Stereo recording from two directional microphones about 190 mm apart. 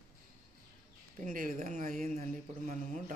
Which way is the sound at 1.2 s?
45° right (ahead or behind).